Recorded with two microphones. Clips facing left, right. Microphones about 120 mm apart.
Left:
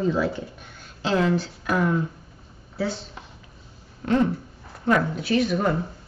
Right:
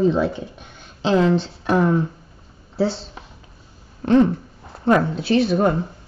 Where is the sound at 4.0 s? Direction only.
30° right (ahead or behind).